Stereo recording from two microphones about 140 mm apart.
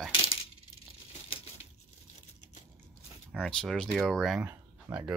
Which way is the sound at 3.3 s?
5° left (ahead or behind).